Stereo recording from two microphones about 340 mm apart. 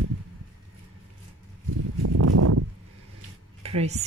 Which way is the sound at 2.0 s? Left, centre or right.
Right.